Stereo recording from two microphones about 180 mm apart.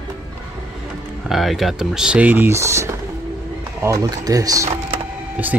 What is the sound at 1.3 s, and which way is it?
Speech, centre (ahead or behind).